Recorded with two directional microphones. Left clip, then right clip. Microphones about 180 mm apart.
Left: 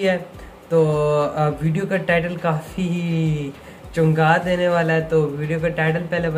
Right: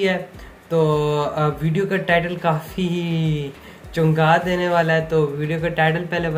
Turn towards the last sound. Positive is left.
turn(degrees=-10)  # may be behind; listen again after turning